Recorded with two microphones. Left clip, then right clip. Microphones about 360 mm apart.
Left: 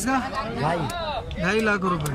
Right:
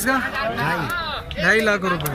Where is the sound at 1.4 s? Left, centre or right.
Centre.